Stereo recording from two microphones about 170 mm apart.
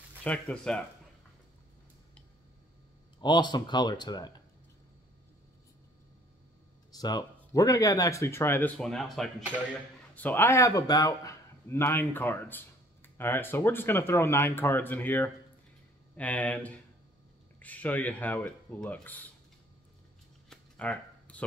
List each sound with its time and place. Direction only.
0.2 s speech: 5° left (ahead or behind)
3.2 s speech: 25° left (ahead or behind)
6.9 s a man's voice: 25° left (ahead or behind)
20.4 s a sound: 5° left (ahead or behind)